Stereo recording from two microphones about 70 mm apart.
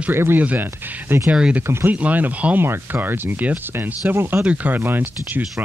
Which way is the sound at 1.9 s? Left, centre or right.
Right.